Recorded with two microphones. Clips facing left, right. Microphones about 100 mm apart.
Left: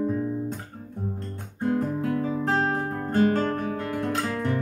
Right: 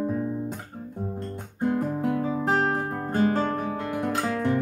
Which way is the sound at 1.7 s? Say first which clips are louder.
Left 1 dB; 15° right (ahead or behind).